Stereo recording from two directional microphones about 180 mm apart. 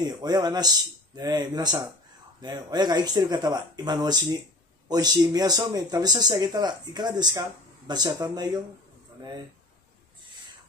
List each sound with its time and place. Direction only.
0.0 s speech: 20° right (ahead or behind)